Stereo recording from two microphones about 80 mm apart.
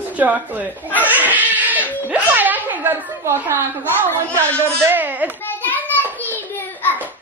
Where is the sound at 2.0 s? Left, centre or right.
Right.